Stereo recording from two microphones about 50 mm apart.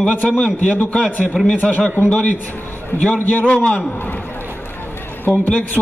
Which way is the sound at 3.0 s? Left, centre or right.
Left.